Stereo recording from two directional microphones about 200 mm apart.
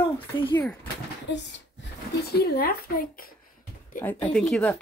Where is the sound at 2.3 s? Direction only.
50° left (ahead or behind).